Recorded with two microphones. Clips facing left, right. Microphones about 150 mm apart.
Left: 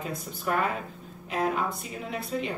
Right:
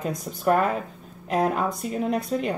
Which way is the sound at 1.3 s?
45° right (ahead or behind).